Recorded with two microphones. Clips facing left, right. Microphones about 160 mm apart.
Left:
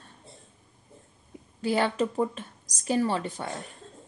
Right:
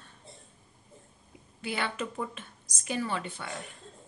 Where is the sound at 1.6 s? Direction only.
40° left (ahead or behind).